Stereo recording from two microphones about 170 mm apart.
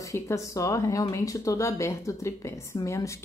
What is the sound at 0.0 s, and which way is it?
Speech, 20° left (ahead or behind).